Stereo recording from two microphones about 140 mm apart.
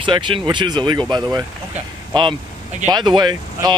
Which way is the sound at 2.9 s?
30° right (ahead or behind).